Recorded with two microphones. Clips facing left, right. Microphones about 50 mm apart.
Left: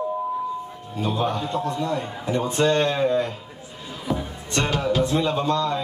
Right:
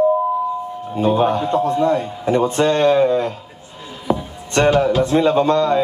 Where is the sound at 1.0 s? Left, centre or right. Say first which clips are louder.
Right 8 dB; right.